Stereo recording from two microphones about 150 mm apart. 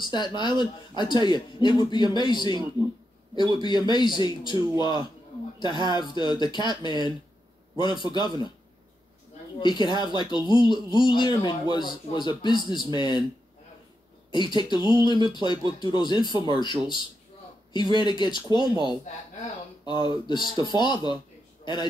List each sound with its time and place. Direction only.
0.0 s a man's voice: 30° left (ahead or behind)
3.6 s a man's voice: 30° left (ahead or behind)
9.6 s speech: 30° left (ahead or behind)
14.3 s speech: 30° left (ahead or behind)